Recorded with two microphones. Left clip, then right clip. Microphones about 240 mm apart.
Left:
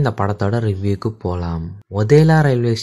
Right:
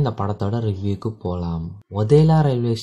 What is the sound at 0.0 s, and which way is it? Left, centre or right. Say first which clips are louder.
Speech: left 5 dB; left.